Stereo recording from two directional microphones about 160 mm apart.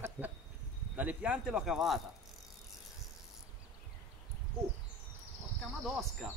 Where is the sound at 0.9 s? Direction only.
10° right (ahead or behind).